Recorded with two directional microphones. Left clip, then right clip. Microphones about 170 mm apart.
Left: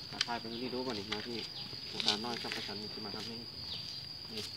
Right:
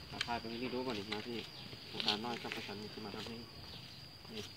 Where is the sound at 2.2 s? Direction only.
5° right (ahead or behind).